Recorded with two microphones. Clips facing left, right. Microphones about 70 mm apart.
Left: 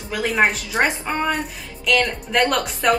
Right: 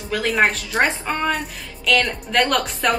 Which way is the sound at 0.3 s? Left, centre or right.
Centre.